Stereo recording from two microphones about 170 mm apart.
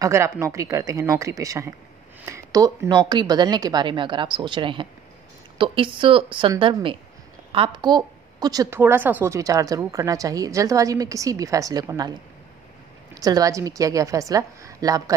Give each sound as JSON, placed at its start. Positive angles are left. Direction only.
{"t": 0.0, "sound": "a woman's voice", "side_deg": -15}